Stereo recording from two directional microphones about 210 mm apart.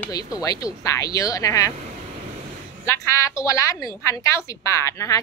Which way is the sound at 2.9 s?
15° left (ahead or behind).